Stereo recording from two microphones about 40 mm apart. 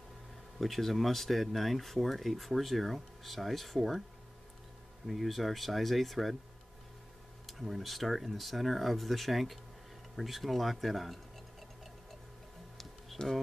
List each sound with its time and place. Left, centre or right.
0.6 s speech: centre
5.0 s speech: centre
7.6 s speech: centre
13.2 s speech: left